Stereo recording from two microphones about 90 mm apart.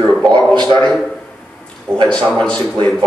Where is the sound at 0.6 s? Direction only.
55° right (ahead or behind).